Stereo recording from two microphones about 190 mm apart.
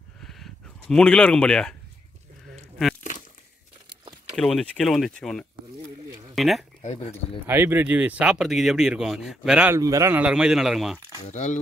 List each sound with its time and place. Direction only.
0.2 s a sound: centre (ahead or behind)
3.0 s crumpling: 40° left (ahead or behind)
4.4 s speech: centre (ahead or behind)
6.8 s speech: 35° left (ahead or behind)
7.4 s speech: 10° right (ahead or behind)
11.2 s speech: 40° left (ahead or behind)